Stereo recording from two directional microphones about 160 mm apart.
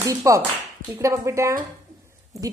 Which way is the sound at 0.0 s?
20° right (ahead or behind).